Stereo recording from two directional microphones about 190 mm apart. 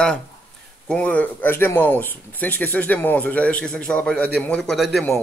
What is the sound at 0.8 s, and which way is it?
Speech, 5° left (ahead or behind).